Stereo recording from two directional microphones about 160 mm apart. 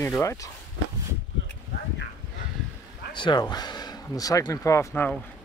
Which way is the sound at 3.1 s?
30° left (ahead or behind).